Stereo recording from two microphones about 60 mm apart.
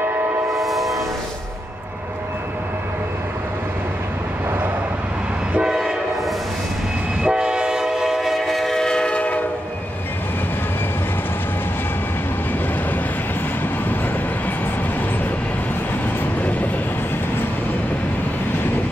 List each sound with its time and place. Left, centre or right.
0.5 s train: centre
5.5 s train: centre; by 9.4 s left